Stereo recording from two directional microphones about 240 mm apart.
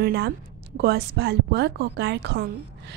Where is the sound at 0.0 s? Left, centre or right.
Right.